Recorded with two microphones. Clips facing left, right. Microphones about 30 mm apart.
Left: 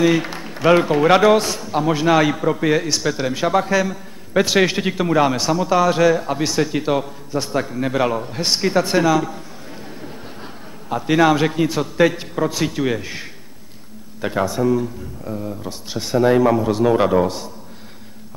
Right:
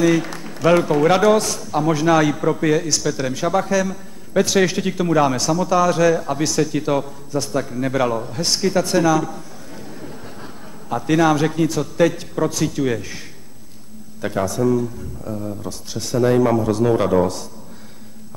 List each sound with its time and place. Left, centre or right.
0.0 s a man's voice: left